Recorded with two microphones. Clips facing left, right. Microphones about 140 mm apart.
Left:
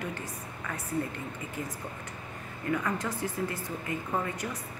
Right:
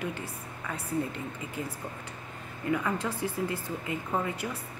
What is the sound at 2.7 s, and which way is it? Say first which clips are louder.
Speech: right 1 dB; 10° right (ahead or behind).